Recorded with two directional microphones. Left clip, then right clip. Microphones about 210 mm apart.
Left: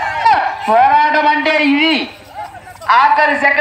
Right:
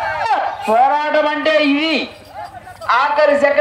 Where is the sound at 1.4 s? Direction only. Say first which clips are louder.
Left 2 dB; 45° right (ahead or behind).